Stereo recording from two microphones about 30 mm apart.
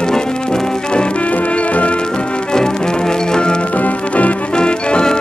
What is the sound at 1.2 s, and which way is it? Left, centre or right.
Music, left.